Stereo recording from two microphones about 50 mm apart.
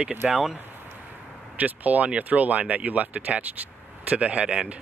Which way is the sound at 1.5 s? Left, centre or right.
Right.